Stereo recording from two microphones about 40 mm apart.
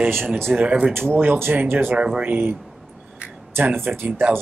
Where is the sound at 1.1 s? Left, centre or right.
Right.